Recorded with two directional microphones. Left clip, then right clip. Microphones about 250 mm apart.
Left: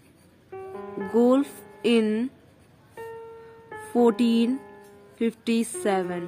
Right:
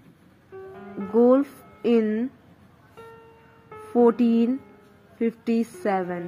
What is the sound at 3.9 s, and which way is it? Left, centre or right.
Music, centre.